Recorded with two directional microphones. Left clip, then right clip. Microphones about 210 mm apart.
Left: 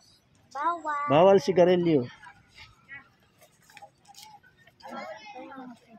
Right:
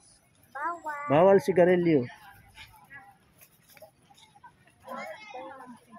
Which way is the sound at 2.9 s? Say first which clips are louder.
Left 4 dB; 40° left (ahead or behind).